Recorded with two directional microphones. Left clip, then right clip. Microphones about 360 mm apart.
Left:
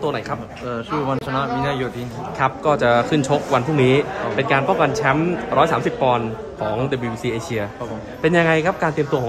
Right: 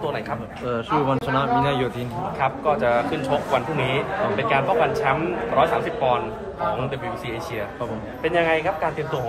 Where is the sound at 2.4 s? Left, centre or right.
Left.